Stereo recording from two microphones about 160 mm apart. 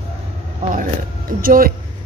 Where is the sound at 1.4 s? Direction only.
65° right (ahead or behind).